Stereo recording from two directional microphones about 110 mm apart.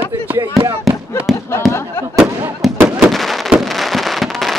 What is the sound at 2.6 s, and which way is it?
Fireworks, 5° right (ahead or behind).